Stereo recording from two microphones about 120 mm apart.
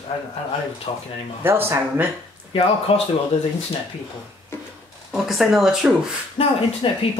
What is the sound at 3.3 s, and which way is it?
Speech, 65° left (ahead or behind).